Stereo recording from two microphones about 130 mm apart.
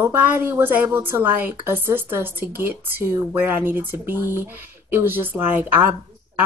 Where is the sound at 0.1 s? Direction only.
15° right (ahead or behind).